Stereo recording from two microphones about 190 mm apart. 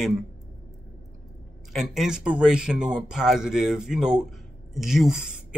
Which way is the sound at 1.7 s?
5° right (ahead or behind).